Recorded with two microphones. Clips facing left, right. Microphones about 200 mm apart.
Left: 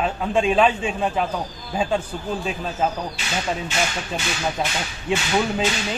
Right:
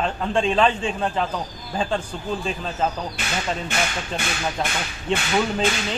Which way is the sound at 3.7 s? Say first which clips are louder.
Left 1 dB; 55° right (ahead or behind).